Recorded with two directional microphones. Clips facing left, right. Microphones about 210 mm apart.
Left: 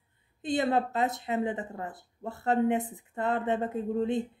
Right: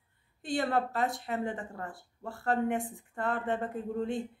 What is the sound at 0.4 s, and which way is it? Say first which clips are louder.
Speech: left 3 dB; 20° left (ahead or behind).